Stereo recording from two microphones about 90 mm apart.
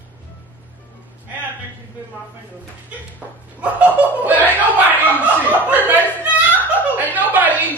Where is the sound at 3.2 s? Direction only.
15° left (ahead or behind).